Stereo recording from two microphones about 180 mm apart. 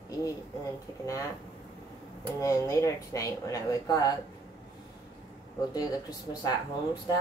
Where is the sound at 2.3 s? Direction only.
15° left (ahead or behind).